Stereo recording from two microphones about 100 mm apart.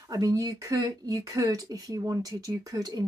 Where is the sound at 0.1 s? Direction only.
35° right (ahead or behind).